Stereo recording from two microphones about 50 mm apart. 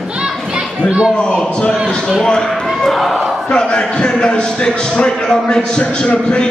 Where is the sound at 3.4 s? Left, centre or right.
Left.